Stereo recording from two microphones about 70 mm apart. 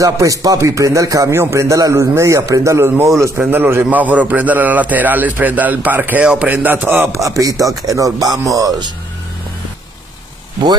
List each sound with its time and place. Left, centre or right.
0.0 s speech: right
3.3 s a man's voice: right
6.2 s speech: centre
6.5 s a man's voice: right
7.1 s speech: right